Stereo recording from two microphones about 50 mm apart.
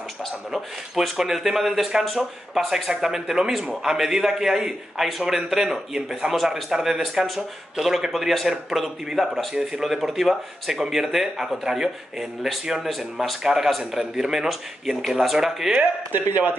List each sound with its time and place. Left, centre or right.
0.5 s a man's voice: centre
15.7 s speech: right